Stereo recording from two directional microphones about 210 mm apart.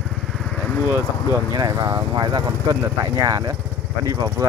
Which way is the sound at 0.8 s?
10° right (ahead or behind).